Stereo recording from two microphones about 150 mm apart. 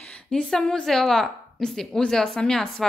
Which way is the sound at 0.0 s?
5° left (ahead or behind).